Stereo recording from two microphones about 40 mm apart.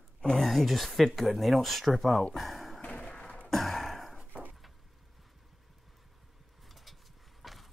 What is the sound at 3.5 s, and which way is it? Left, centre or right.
Sigh, centre.